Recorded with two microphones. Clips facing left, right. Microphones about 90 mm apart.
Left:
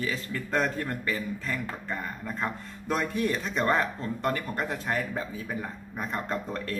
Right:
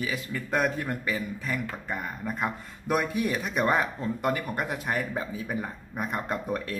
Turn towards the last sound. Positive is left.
turn(degrees=-10)  # may be behind; listen again after turning